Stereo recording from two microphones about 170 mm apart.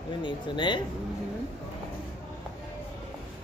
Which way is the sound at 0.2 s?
25° left (ahead or behind).